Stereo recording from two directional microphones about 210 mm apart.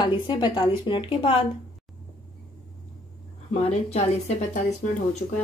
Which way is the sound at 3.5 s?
30° left (ahead or behind).